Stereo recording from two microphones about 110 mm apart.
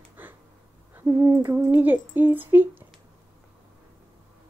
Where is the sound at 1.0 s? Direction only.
25° right (ahead or behind).